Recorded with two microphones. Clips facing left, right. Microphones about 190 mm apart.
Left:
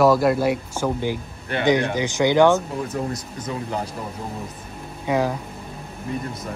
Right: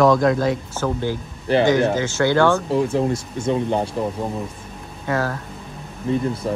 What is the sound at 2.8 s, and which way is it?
Speech, 30° right (ahead or behind).